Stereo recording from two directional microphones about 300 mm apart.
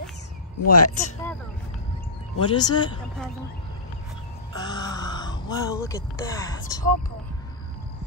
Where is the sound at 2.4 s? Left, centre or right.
Centre.